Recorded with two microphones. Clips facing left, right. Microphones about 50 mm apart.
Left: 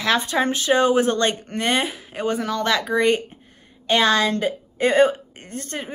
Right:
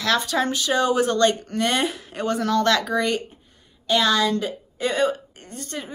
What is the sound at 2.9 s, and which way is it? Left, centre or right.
A woman's voice, left.